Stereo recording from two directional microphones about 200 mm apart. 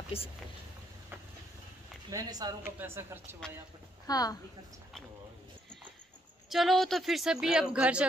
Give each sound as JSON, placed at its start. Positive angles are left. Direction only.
{"t": 0.1, "sound": "a woman's voice", "side_deg": 30}
{"t": 2.0, "sound": "speech", "side_deg": -20}
{"t": 4.1, "sound": "a woman's voice", "side_deg": 20}
{"t": 6.5, "sound": "speech", "side_deg": 0}